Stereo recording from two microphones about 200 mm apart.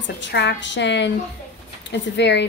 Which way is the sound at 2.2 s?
60° left (ahead or behind).